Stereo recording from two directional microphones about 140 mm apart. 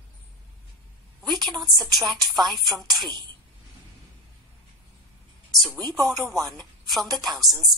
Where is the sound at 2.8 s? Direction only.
30° right (ahead or behind).